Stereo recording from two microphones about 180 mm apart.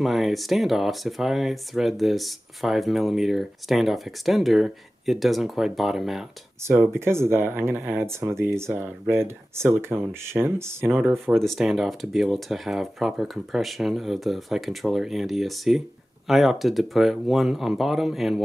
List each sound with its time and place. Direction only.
0.0 s speech: centre (ahead or behind)
6.8 s speech: 15° right (ahead or behind)
11.3 s speech: centre (ahead or behind)